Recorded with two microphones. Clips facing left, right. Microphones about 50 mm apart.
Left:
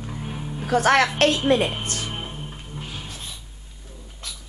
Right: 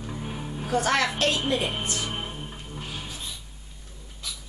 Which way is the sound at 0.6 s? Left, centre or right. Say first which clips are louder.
Left 6 dB; left.